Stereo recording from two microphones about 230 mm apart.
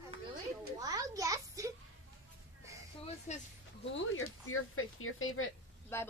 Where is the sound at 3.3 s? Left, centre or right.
Left.